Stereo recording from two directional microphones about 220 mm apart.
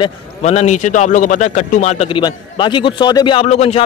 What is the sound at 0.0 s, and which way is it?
A man's voice, 30° left (ahead or behind).